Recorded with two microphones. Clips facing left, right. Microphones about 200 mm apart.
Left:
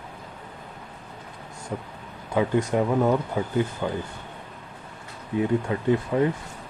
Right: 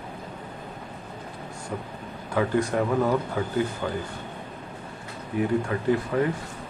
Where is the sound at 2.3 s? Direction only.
20° left (ahead or behind).